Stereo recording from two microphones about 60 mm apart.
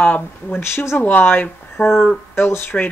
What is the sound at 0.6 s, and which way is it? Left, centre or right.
Speech, left.